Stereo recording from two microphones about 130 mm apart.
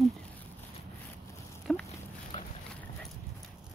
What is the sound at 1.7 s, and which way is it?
Dog, centre (ahead or behind).